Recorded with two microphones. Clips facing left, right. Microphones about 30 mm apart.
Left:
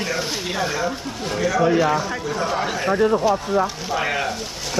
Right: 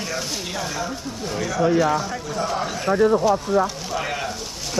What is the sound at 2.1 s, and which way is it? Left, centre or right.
Speech, centre.